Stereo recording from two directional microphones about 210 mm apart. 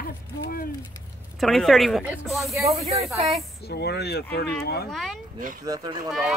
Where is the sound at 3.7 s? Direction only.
50° left (ahead or behind).